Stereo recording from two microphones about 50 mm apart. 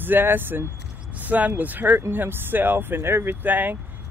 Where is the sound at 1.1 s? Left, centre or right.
Right.